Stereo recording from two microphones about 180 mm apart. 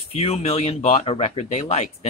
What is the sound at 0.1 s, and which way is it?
Speech, 35° left (ahead or behind).